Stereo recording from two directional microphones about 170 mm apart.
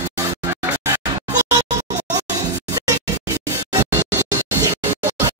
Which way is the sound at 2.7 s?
20° right (ahead or behind).